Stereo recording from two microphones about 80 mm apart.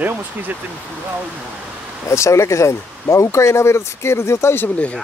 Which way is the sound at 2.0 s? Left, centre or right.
Left.